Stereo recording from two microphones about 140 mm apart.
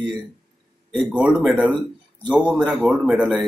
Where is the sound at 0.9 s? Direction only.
5° right (ahead or behind).